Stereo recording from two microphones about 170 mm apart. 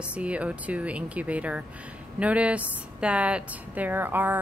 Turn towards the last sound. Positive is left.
turn(degrees=-10)  # may be behind; listen again after turning